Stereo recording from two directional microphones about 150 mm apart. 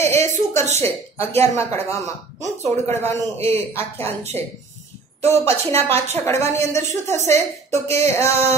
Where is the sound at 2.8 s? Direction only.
15° left (ahead or behind).